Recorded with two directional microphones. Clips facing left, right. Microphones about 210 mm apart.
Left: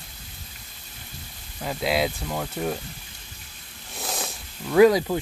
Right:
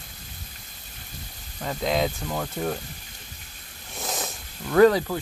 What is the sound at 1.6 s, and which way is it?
Speech, 5° left (ahead or behind).